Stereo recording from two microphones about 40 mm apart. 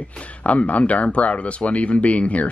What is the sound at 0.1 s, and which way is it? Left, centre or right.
Speech, left.